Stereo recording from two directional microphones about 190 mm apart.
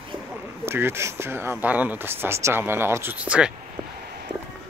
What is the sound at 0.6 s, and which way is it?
Speech, 10° right (ahead or behind).